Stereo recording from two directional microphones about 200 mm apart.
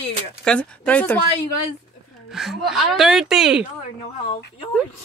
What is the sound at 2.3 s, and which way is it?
A woman's voice, centre (ahead or behind).